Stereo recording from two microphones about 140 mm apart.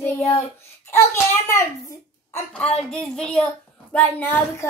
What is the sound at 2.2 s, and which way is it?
Speech, 20° left (ahead or behind).